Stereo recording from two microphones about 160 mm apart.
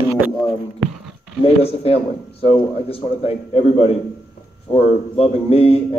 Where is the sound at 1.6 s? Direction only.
40° left (ahead or behind).